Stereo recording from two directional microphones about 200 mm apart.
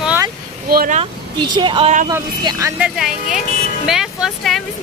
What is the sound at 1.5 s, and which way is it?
Vehicle, 25° right (ahead or behind).